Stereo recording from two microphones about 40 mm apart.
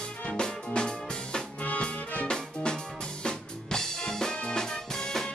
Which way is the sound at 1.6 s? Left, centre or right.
Left.